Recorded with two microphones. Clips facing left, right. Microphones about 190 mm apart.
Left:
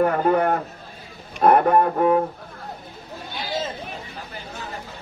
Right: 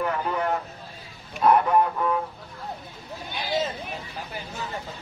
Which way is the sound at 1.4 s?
55° left (ahead or behind).